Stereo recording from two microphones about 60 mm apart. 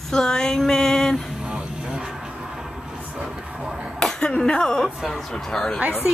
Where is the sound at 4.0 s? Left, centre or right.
Centre.